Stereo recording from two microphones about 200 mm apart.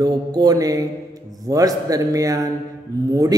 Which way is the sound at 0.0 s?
20° right (ahead or behind).